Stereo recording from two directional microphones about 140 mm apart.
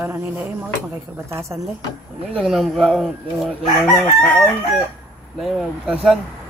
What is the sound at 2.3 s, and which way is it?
Speech, centre (ahead or behind).